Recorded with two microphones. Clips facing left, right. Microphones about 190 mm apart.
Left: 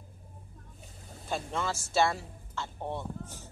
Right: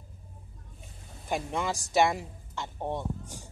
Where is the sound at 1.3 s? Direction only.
15° right (ahead or behind).